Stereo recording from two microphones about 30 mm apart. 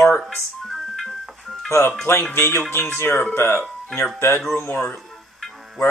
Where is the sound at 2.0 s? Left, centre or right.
Centre.